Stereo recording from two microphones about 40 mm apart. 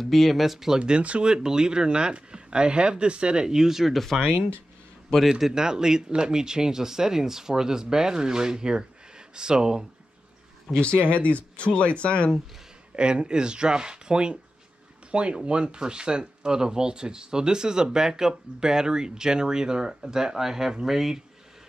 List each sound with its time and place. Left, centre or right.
0.0 s speech: centre
0.7 s speech: right
1.3 s speech: centre
3.9 s speech: centre
5.4 s speech: centre
10.8 s speech: left
12.9 s speech: right